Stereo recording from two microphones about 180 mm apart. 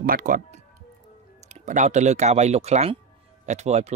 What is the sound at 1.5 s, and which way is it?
Speech, 40° right (ahead or behind).